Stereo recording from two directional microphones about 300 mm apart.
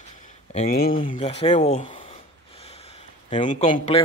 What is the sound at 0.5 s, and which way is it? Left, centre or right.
Speech, left.